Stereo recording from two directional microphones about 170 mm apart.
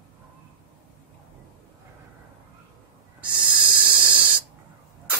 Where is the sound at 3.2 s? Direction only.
10° right (ahead or behind).